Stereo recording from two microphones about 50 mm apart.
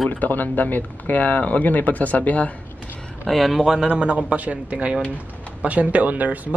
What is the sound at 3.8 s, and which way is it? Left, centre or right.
Speech, right.